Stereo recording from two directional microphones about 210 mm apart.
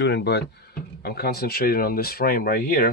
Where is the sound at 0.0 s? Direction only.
55° left (ahead or behind).